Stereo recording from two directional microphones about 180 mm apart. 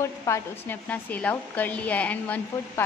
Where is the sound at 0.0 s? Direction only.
15° left (ahead or behind).